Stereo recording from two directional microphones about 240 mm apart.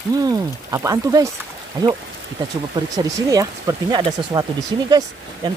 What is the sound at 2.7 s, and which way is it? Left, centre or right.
Speech, centre.